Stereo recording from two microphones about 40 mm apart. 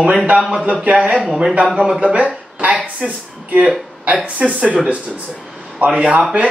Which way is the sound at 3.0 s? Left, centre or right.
Right.